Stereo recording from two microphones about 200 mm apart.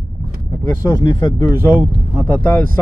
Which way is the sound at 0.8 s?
15° left (ahead or behind).